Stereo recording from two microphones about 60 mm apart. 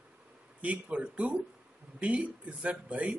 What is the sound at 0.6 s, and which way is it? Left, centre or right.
Speech, right.